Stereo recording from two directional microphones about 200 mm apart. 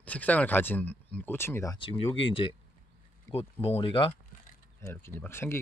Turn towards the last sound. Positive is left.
turn(degrees=10)  # may be behind; listen again after turning